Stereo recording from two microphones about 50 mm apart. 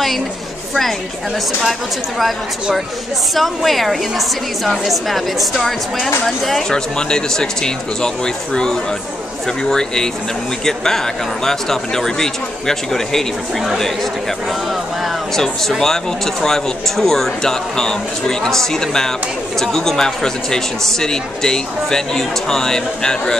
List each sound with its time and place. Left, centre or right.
1.6 s speech: centre
6.7 s speech: centre
9.7 s speech: centre
15.3 s speech: centre